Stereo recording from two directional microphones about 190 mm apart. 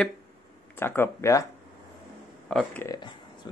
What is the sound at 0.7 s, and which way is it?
Speech, 10° left (ahead or behind).